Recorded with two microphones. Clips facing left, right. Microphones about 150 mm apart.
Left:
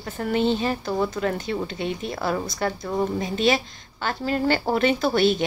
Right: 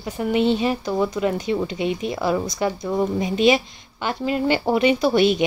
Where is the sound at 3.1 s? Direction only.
20° right (ahead or behind); by 5.1 s centre (ahead or behind).